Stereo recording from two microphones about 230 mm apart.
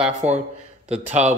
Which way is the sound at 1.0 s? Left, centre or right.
Right.